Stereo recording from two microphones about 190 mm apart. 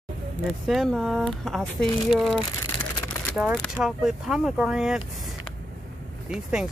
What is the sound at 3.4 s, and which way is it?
Speech, 5° right (ahead or behind).